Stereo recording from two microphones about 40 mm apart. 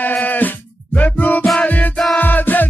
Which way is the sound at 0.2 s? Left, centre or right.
Left.